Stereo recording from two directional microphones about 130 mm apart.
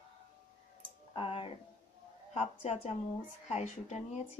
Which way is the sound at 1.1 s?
45° left (ahead or behind).